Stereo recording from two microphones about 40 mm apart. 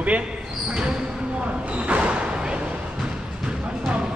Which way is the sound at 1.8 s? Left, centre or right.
Right.